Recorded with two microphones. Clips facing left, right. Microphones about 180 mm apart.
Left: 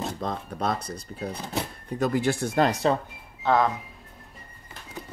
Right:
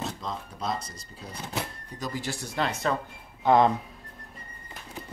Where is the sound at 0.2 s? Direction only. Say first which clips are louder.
Left 5 dB; 60° left (ahead or behind).